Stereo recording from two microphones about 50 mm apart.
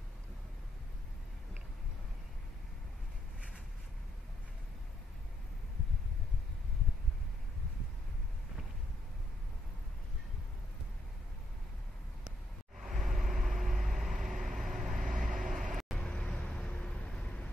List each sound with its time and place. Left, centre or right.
12.3 s vehicle: centre
16.0 s vehicle: left